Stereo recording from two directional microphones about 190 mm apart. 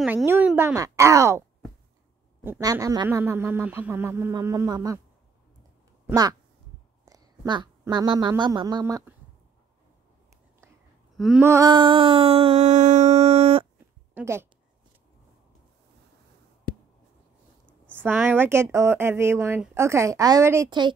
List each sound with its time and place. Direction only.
0.0 s speech: 10° right (ahead or behind)
2.4 s speech: 15° right (ahead or behind)
6.0 s a woman's voice: 20° right (ahead or behind)
11.1 s a sound: centre (ahead or behind)
11.4 s a sound: 20° right (ahead or behind)
14.1 s speech: 10° right (ahead or behind)
17.9 s speech: 10° right (ahead or behind)